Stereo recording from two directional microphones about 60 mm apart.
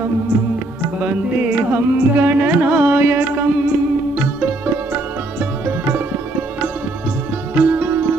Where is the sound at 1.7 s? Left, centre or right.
Right.